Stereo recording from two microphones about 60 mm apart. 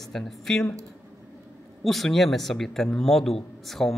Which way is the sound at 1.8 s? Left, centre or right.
Centre.